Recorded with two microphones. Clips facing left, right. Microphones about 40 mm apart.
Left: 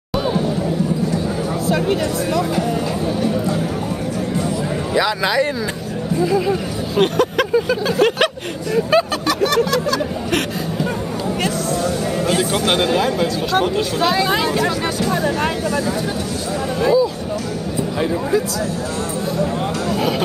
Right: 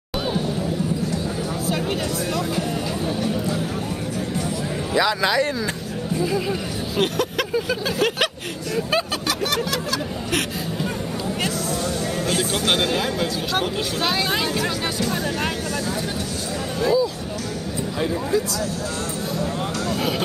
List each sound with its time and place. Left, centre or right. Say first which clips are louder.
1.8 s speech: left 6 dB; centre
4.9 s speech: left 2 dB; centre
6.1 s snicker: left 6 dB; centre
7.0 s vehicle: left 6 dB; centre
8.7 s snicker: left 7 dB; centre
11.4 s speech: left 6 dB; centre
16.8 s speech: left 4 dB; centre
19.9 s speech: left 5 dB; centre